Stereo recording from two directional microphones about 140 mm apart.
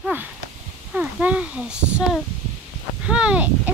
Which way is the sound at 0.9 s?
10° right (ahead or behind).